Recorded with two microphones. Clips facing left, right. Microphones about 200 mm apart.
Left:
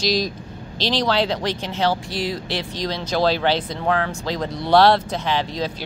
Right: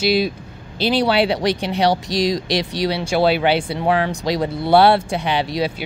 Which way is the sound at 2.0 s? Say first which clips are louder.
Right 6 dB; 80° right.